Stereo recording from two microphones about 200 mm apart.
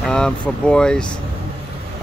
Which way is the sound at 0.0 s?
5° left (ahead or behind).